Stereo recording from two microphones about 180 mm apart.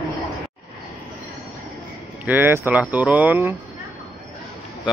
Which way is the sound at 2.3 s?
10° right (ahead or behind).